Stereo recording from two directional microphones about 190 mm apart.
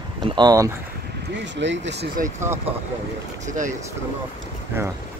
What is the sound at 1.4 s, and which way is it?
Speech, 70° right (ahead or behind).